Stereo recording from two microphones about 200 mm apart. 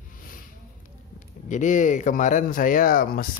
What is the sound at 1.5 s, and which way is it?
Speech, 40° left (ahead or behind).